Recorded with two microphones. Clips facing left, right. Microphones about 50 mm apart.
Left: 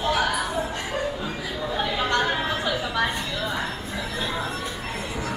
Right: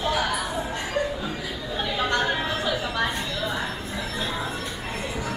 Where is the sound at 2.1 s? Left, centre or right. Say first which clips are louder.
Even; centre.